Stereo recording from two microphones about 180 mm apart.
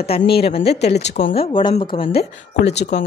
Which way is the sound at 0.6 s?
65° left (ahead or behind).